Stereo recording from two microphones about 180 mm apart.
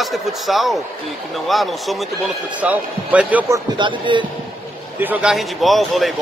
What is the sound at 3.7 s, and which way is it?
Speech, 25° right (ahead or behind).